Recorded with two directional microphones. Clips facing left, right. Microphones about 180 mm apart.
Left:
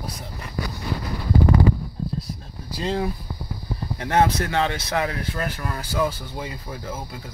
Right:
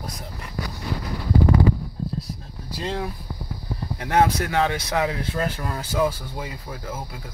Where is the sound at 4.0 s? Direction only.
5° right (ahead or behind); by 5.9 s 20° right (ahead or behind).